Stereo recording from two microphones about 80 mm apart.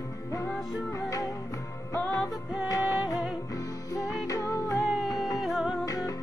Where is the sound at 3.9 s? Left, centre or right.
Left.